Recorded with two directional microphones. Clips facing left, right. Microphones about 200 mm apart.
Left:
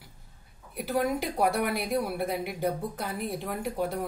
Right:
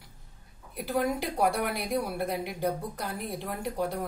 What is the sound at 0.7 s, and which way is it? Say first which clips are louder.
A woman's voice: left 1 dB; centre (ahead or behind).